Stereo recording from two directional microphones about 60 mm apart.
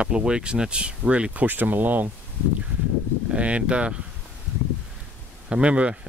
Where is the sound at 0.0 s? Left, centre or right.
Centre.